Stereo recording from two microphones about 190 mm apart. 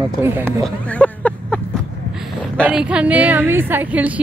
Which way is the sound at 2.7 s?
5° right (ahead or behind).